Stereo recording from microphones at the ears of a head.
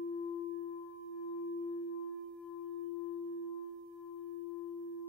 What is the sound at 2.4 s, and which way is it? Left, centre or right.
Singing bowl, left.